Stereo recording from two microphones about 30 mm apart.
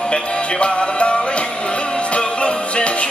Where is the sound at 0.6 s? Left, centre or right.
Left.